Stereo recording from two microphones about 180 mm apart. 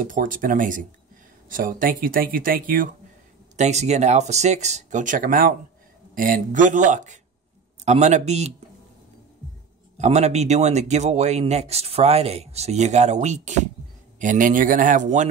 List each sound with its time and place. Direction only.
0.0 s speech: 50° right (ahead or behind)
3.5 s a man's voice: 40° right (ahead or behind)
9.9 s a man's voice: 40° right (ahead or behind)